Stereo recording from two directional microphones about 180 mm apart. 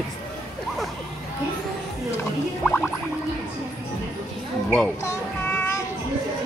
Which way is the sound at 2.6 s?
5° left (ahead or behind).